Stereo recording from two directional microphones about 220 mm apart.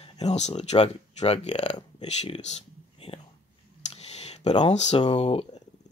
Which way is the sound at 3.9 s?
30° left (ahead or behind).